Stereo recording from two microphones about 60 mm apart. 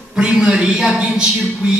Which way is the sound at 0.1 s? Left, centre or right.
Centre.